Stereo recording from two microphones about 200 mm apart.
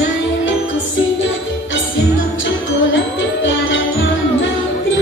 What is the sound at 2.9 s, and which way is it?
Music, 70° left (ahead or behind).